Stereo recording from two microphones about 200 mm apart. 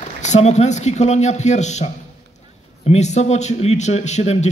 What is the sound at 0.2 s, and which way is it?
A man's voice, 35° left (ahead or behind).